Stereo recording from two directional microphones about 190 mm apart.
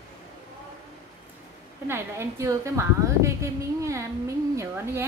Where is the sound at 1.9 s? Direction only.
15° right (ahead or behind).